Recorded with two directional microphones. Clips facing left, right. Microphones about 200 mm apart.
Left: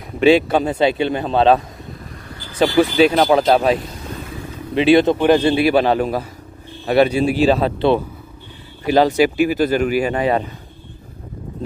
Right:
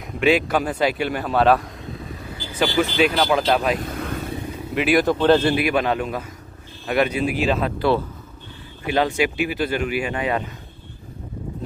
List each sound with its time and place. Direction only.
0.2 s a man's voice: 30° left (ahead or behind)
2.6 s speech: 30° left (ahead or behind)
4.7 s a man's voice: 25° left (ahead or behind)
5.1 s a man's voice: 15° left (ahead or behind)
5.6 s speech: 30° left (ahead or behind)